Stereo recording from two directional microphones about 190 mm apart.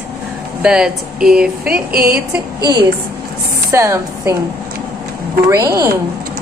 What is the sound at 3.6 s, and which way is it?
Speech, 15° right (ahead or behind).